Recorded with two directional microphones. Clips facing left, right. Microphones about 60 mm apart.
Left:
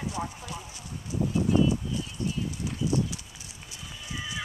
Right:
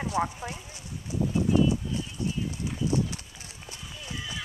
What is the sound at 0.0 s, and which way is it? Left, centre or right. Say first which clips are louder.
Clip-clop: right 5 dB; right.